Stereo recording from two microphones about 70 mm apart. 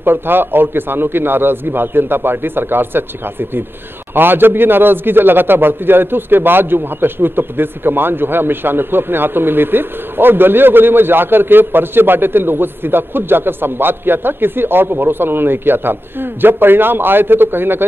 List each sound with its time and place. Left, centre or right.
0.0 s a man's voice: right